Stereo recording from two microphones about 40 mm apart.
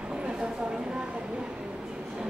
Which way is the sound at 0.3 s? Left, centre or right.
Right.